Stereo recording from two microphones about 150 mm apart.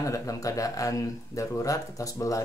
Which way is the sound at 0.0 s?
20° left (ahead or behind).